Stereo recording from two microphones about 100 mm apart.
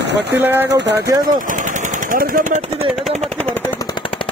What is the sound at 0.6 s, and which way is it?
Speech, 40° right (ahead or behind).